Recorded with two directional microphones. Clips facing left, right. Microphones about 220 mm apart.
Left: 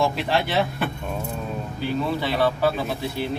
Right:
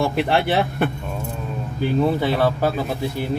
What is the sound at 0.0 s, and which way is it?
Speech, 55° right (ahead or behind).